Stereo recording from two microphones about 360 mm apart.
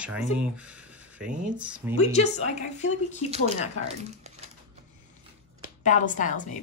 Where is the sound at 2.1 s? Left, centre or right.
Centre.